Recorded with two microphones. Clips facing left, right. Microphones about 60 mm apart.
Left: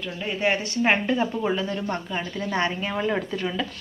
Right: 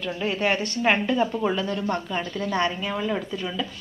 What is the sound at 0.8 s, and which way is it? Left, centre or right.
Speech, centre.